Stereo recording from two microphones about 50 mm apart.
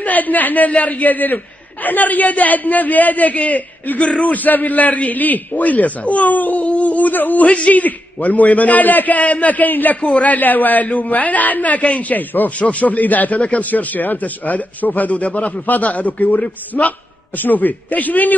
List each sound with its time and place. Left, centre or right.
0.0 s a man's voice: left